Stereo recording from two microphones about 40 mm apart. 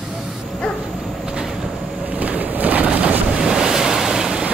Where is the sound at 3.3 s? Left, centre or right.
Centre.